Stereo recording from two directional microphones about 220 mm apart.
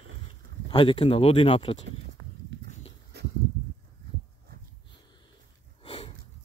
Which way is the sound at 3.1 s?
50° right (ahead or behind).